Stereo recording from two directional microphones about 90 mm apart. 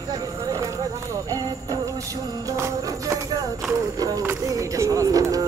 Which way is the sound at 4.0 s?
35° right (ahead or behind).